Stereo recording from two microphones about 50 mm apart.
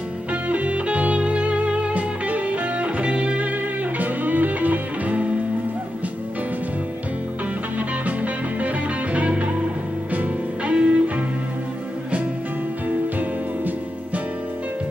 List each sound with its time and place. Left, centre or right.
0.3 s music: right
4.0 s music: right
8.2 s music: right
12.8 s music: right